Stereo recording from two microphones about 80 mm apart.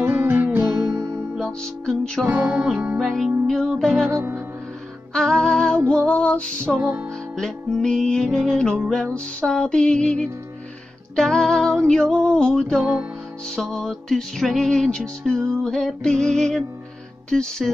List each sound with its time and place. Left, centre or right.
0.0 s music: right
1.4 s music: centre
2.2 s music: right
3.0 s music: centre
4.1 s music: right
5.1 s music: centre